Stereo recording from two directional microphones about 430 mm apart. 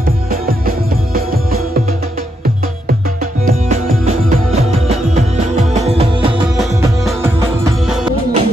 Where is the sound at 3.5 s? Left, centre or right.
Centre.